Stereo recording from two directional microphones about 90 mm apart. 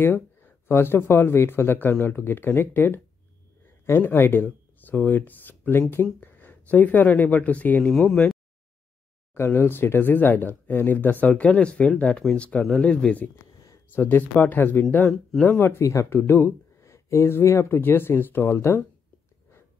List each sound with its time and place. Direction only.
0.0 s speech: 25° left (ahead or behind)
8.1 s speech: centre (ahead or behind)
9.3 s speech: 25° left (ahead or behind)